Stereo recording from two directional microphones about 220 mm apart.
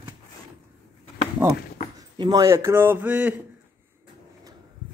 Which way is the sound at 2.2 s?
20° right (ahead or behind).